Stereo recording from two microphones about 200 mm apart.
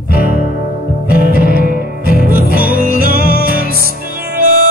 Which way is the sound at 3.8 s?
45° right (ahead or behind).